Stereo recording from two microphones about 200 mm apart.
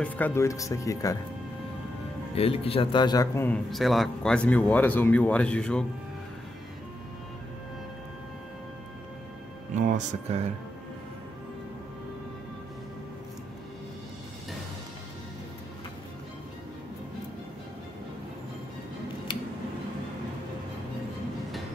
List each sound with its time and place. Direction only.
0.0 s a man's voice: 10° left (ahead or behind)
2.3 s a man's voice: 30° left (ahead or behind); by 5.9 s 5° left (ahead or behind)
9.8 s speech: 40° right (ahead or behind)